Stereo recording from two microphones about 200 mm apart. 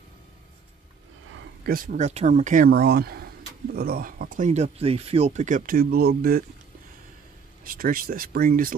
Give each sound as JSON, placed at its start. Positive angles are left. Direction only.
{"t": 1.6, "sound": "speech", "side_deg": -45}
{"t": 7.6, "sound": "speech", "side_deg": -45}